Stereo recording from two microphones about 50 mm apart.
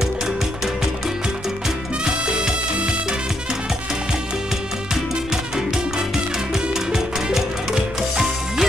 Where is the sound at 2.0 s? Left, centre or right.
Centre.